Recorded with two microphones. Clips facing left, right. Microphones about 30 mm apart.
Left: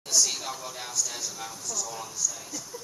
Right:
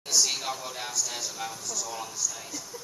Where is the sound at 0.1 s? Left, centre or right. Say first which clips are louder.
Even; centre.